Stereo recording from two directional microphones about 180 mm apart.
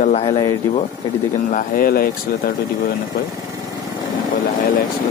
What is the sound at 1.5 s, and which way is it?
Speech, 55° left (ahead or behind).